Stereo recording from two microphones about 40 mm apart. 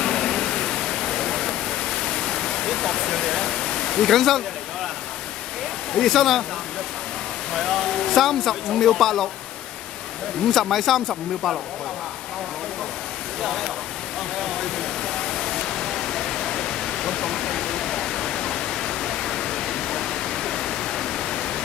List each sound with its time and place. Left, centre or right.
0.0 s pink noise: centre
5.9 s speech: centre
7.5 s speech: centre
10.5 s speech: centre
13.4 s speech: centre
14.4 s waterfall: centre
18.1 s pink noise: centre